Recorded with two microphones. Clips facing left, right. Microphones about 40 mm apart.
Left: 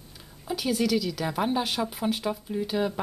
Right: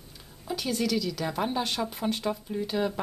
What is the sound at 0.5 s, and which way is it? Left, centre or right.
A woman's voice, centre.